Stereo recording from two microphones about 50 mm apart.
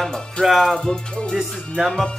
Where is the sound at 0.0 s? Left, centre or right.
Centre.